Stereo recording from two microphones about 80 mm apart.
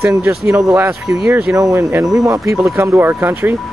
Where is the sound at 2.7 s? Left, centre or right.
Right.